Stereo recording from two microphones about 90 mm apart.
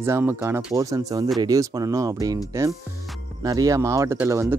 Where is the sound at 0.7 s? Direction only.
40° right (ahead or behind).